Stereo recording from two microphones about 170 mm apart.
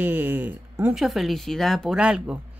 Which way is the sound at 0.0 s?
10° right (ahead or behind).